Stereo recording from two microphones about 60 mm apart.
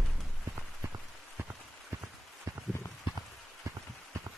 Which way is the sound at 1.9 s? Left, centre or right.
Right.